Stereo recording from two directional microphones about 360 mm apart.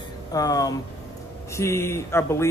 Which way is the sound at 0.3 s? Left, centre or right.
Centre.